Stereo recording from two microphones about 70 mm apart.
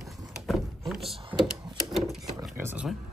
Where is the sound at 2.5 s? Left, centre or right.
Right.